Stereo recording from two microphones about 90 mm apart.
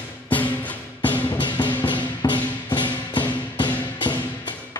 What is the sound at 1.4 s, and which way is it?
Music, 55° left (ahead or behind).